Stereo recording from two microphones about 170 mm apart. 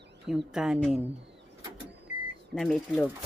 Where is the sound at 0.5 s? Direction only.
5° right (ahead or behind).